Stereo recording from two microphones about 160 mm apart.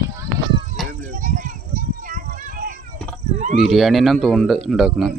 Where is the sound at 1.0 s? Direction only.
55° right (ahead or behind).